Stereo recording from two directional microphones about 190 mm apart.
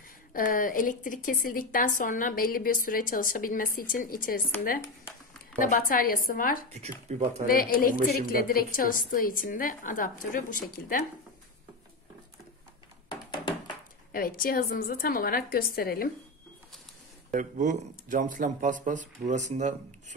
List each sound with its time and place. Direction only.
0.3 s a woman's voice: 45° left (ahead or behind)
4.8 s a sound: 15° left (ahead or behind)
5.6 s a woman's voice: 45° left (ahead or behind)
6.7 s speech: 35° right (ahead or behind)
7.4 s a woman's voice: 50° left (ahead or behind)
14.1 s a woman's voice: 50° left (ahead or behind)
17.3 s speech: 45° right (ahead or behind)